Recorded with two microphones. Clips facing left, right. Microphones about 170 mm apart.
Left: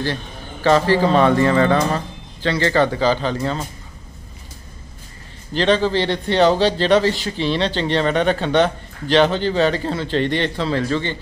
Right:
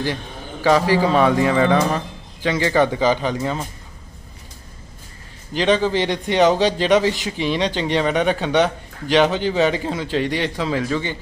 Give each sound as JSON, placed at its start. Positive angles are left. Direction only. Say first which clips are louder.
{"t": 0.0, "sound": "a man's voice", "louder": "even", "side_deg": -10}
{"t": 5.5, "sound": "a man's voice", "louder": "left 1 dB", "side_deg": -10}